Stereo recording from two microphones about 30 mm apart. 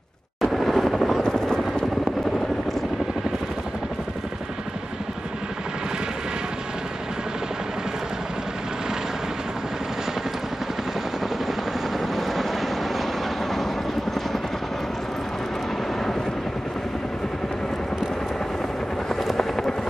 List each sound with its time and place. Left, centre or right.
0.4 s vehicle: centre
1.2 s helicopter: centre
12.2 s vehicle: centre
19.3 s helicopter: centre